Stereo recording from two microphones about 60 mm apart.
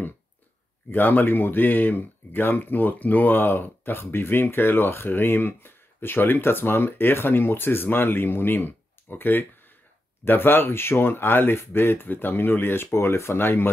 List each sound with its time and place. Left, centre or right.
0.8 s speech: left